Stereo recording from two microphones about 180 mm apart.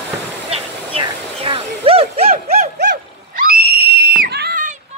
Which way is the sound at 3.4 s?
60° right (ahead or behind).